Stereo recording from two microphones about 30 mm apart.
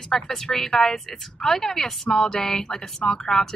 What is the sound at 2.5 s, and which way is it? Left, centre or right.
Speech, left.